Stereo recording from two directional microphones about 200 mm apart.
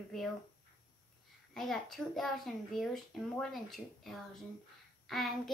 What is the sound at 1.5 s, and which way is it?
Speech, centre (ahead or behind).